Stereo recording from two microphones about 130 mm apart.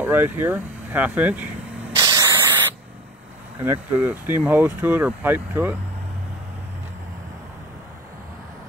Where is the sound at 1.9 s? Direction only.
35° right (ahead or behind).